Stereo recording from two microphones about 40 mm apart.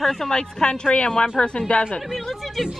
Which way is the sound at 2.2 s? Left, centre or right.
Centre.